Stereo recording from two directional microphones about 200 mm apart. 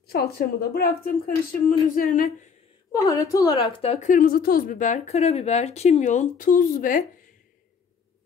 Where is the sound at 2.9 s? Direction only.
15° left (ahead or behind).